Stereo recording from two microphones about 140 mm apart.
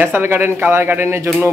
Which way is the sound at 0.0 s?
15° right (ahead or behind).